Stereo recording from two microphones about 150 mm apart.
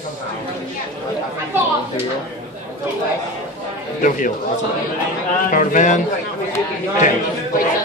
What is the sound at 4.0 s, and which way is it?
Speech, 60° left (ahead or behind).